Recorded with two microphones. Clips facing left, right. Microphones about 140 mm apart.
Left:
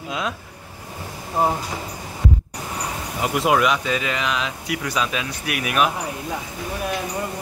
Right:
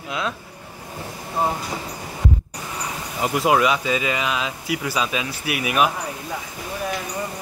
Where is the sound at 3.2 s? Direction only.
Centre (ahead or behind).